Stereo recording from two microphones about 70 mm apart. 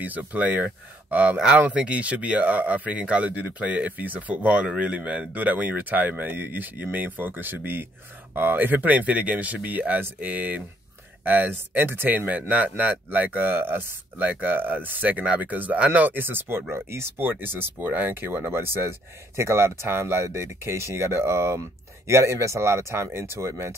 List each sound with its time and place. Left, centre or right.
0.0 s speech: right